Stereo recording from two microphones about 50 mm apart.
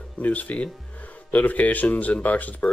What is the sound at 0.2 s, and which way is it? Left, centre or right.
Speech, left.